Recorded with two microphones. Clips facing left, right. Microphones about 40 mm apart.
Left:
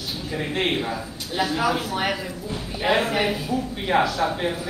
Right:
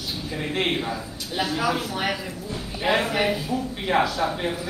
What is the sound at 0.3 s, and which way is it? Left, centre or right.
Speech, centre.